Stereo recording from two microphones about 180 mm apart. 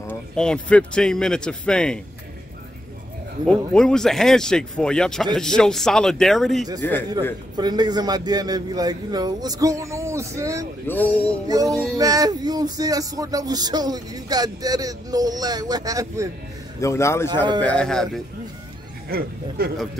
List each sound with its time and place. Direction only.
0.0 s speech: 5° left (ahead or behind)
3.4 s speech: 5° left (ahead or behind)
7.5 s music: 25° right (ahead or behind)
10.9 s speech: 10° left (ahead or behind)
11.4 s music: 20° right (ahead or behind)
16.8 s speech: 15° left (ahead or behind)
19.0 s speech: 60° right (ahead or behind)